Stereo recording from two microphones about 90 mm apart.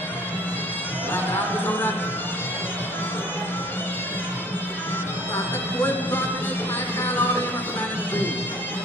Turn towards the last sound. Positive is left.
turn(degrees=20)  # may be behind; listen again after turning